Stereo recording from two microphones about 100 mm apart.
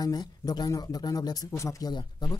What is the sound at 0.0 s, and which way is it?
A man's voice, 40° left (ahead or behind).